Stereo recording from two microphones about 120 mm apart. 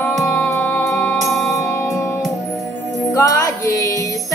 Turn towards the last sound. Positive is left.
turn(degrees=30)  # may be behind; listen again after turning